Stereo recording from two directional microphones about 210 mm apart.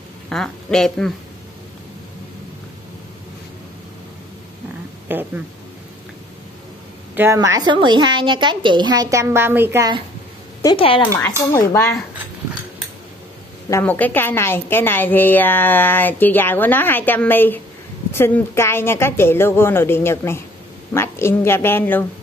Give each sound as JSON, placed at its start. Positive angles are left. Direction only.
{"t": 0.3, "sound": "a woman's voice", "side_deg": 5}
{"t": 5.0, "sound": "a sound", "side_deg": -10}
{"t": 7.2, "sound": "a woman's voice", "side_deg": -15}
{"t": 10.6, "sound": "speech", "side_deg": 20}
{"t": 13.7, "sound": "a woman's voice", "side_deg": 10}